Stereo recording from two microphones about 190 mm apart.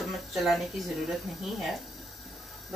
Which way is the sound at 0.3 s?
Centre (ahead or behind).